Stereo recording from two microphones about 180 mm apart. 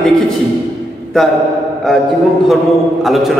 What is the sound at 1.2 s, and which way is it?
Speech, centre (ahead or behind).